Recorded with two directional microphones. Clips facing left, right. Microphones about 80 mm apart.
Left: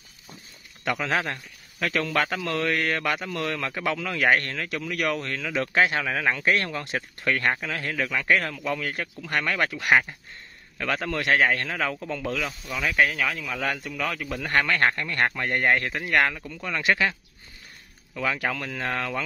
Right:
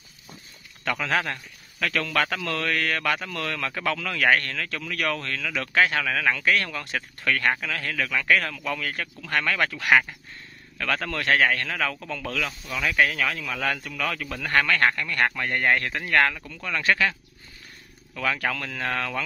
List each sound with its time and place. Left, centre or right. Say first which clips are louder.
0.8 s speech: even; centre
18.1 s speech: even; centre